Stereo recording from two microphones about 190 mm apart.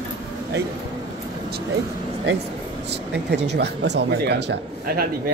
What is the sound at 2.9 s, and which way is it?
Speech, 65° right (ahead or behind).